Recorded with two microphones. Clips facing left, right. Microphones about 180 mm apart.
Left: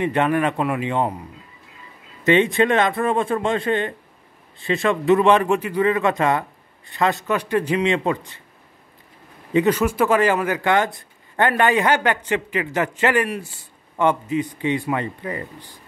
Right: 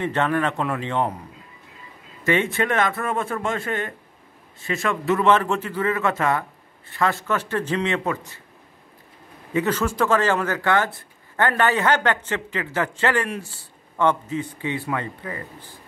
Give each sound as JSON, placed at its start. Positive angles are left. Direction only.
{"t": 0.0, "sound": "speech", "side_deg": 15}
{"t": 2.2, "sound": "a man's voice", "side_deg": 20}
{"t": 9.5, "sound": "speech", "side_deg": 15}